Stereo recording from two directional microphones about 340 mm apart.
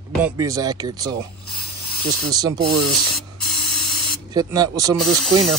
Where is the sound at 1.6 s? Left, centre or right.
Left.